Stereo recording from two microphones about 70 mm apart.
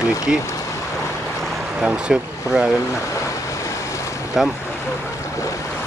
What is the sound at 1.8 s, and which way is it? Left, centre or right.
Speech, centre.